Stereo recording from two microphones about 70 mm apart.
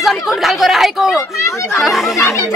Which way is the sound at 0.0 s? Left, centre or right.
Centre.